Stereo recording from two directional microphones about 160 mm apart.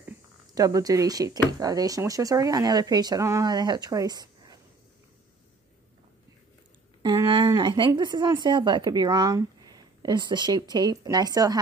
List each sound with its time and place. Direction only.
0.6 s speech: 20° right (ahead or behind)
7.6 s speech: 30° right (ahead or behind)